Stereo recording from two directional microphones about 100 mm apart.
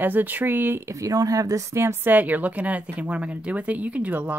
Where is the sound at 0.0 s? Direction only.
20° right (ahead or behind).